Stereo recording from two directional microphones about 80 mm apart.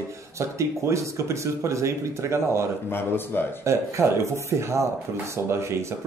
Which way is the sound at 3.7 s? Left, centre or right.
Right.